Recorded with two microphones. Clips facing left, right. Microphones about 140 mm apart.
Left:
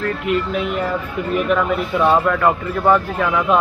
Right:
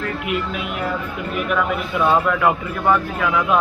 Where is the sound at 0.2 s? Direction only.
5° right (ahead or behind).